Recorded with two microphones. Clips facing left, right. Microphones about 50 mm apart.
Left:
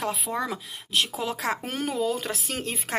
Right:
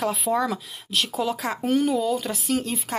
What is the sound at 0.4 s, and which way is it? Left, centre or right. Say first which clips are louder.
Speech: right 4 dB; centre.